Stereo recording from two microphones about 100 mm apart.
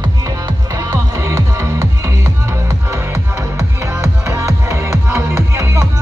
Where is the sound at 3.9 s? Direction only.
30° right (ahead or behind).